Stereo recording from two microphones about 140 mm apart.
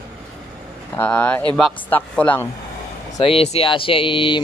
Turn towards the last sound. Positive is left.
turn(degrees=40)  # may be behind; listen again after turning